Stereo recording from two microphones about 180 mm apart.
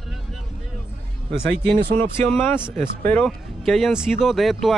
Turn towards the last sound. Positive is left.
turn(degrees=0)  # may be behind; listen again after turning